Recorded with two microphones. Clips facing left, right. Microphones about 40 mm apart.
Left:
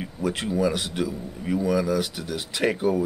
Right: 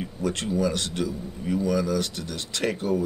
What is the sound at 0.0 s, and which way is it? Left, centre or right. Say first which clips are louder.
A man's voice: left 1 dB; centre.